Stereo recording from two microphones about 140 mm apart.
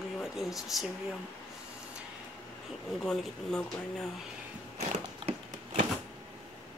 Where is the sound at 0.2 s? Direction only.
Centre (ahead or behind).